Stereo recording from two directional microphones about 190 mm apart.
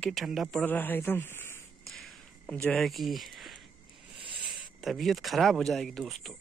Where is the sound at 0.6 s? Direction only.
10° left (ahead or behind).